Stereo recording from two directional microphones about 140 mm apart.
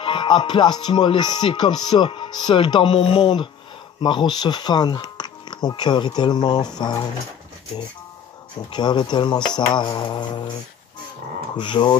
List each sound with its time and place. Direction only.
0.0 s music: 35° left (ahead or behind)
8.7 s music: 30° left (ahead or behind)
11.5 s music: 35° left (ahead or behind)